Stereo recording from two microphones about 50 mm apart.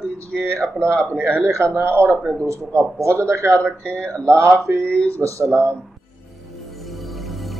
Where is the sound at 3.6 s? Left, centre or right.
Left.